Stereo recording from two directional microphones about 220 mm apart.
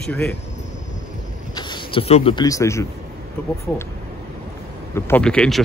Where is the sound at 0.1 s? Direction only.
5° left (ahead or behind).